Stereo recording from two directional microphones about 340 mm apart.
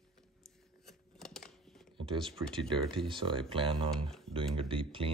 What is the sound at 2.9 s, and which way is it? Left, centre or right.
Speech, centre.